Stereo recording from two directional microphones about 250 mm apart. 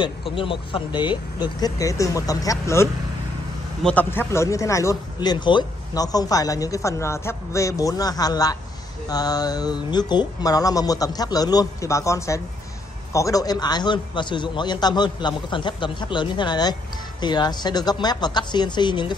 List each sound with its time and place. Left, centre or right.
0.4 s speech: centre